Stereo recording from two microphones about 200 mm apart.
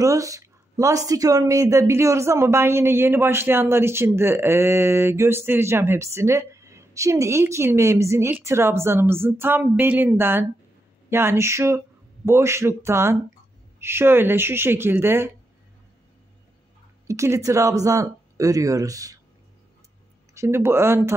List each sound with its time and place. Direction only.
0.0 s speech: 15° right (ahead or behind)
17.1 s speech: 15° right (ahead or behind)
20.3 s speech: 10° right (ahead or behind)